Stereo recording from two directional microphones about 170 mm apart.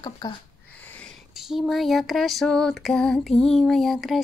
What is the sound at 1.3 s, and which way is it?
Speech, centre (ahead or behind).